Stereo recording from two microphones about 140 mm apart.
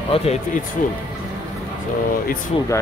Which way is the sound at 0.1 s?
45° left (ahead or behind).